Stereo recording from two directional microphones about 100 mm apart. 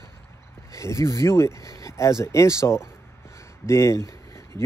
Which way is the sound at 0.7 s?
30° left (ahead or behind).